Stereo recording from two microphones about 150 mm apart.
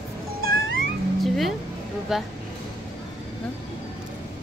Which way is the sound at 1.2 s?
Centre (ahead or behind).